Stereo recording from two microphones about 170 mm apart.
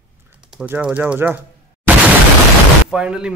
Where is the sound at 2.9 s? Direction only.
5° right (ahead or behind).